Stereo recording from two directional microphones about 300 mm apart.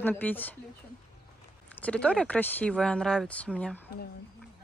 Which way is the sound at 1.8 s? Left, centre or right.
Centre.